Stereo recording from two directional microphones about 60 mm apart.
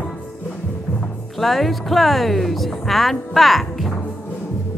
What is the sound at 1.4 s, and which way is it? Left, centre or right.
Speech, centre.